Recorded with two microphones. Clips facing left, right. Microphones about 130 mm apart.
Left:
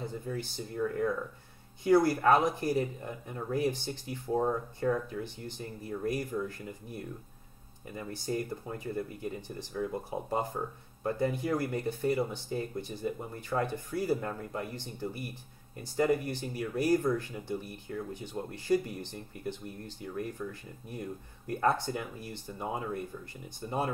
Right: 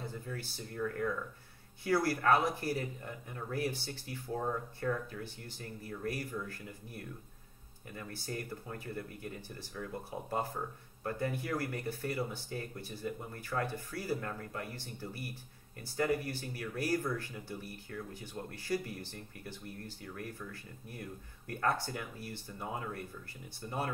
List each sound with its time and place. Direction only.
0.0 s speech: 20° left (ahead or behind)